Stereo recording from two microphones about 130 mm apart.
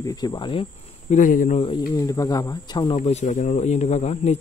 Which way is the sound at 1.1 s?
90° left.